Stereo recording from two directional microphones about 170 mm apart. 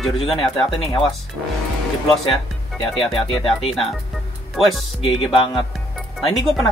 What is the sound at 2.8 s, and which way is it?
Speech, 30° left (ahead or behind).